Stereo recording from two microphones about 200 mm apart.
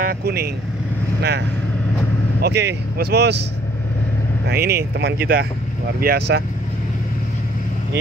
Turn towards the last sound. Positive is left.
turn(degrees=-55)  # may be behind; listen again after turning